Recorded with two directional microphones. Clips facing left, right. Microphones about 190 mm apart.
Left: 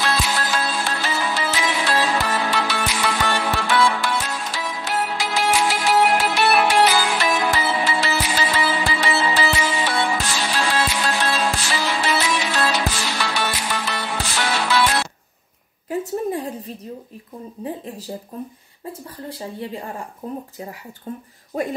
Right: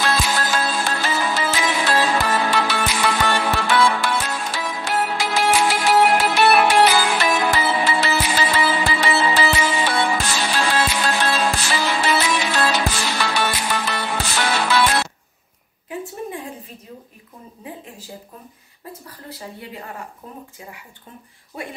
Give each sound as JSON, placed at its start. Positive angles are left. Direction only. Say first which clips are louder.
{"t": 0.0, "sound": "music", "louder": "right 1 dB", "side_deg": -45}
{"t": 15.9, "sound": "a sound", "louder": "left 6 dB", "side_deg": 40}
{"t": 19.2, "sound": "speech", "louder": "left 5 dB", "side_deg": 30}
{"t": 21.5, "sound": "speech", "louder": "left 8 dB", "side_deg": 40}